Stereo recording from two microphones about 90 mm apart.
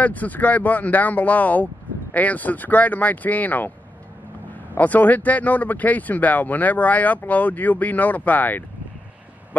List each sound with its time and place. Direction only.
0.0 s speech: 15° left (ahead or behind)
4.7 s speech: 20° left (ahead or behind)